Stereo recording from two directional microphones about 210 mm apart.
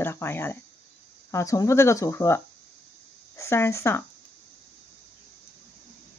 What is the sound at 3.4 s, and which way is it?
Speech, 15° left (ahead or behind).